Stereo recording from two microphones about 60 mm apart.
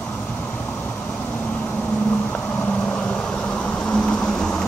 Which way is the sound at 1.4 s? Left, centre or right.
Left.